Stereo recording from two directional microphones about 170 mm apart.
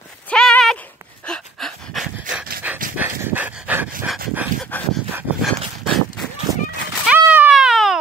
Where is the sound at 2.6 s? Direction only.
10° right (ahead or behind).